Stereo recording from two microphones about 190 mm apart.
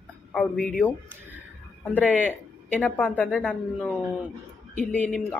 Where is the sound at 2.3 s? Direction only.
5° left (ahead or behind).